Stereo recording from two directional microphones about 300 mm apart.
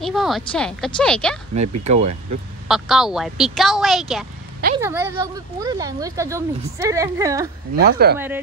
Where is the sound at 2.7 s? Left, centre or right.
Centre.